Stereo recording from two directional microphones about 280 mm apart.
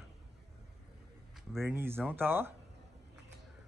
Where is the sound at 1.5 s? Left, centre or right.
Centre.